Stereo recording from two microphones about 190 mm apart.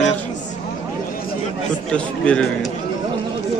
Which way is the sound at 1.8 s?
5° left (ahead or behind).